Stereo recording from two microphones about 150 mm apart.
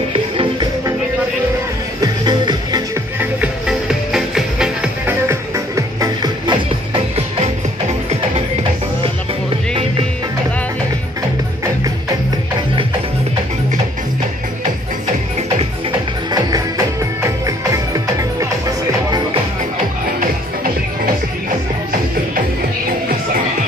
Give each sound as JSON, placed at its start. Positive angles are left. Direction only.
{"t": 0.1, "sound": "music", "side_deg": -35}
{"t": 2.0, "sound": "music", "side_deg": -30}
{"t": 3.2, "sound": "music", "side_deg": -5}
{"t": 16.3, "sound": "music", "side_deg": -25}